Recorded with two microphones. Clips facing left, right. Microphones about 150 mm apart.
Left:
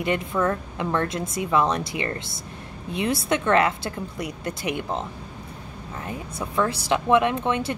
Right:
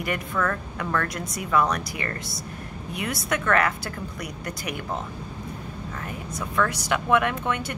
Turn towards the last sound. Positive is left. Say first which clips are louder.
# left 3 dB
turn(degrees=25)  # may be behind; listen again after turning